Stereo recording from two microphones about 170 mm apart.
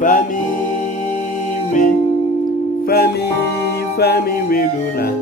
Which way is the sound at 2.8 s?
65° left (ahead or behind).